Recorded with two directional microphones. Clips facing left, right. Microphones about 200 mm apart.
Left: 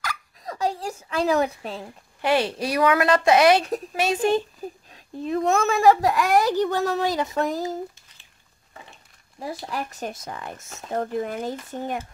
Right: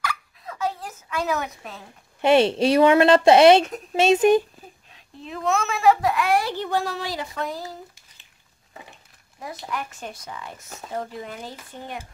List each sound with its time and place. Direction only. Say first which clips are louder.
0.0 s a sound: right 2 dB; 40° left (ahead or behind)
2.2 s a woman's voice: right 5 dB; 25° right (ahead or behind)
4.9 s a child's voice: left 10 dB; 40° left (ahead or behind)
9.4 s a child's voice: left 2 dB; 30° left (ahead or behind); by 12.0 s 45° left (ahead or behind)